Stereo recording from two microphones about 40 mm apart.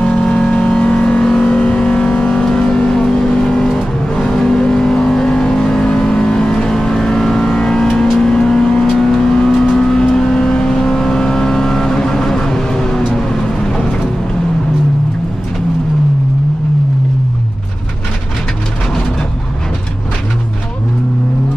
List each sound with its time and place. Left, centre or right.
0.0 s vehicle: left